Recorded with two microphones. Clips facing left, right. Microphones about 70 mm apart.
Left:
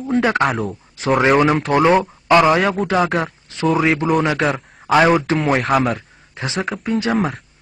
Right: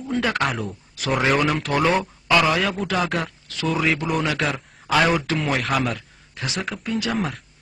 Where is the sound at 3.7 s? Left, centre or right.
Left.